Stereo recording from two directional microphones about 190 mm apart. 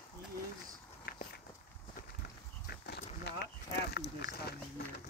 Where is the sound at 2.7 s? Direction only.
55° left (ahead or behind).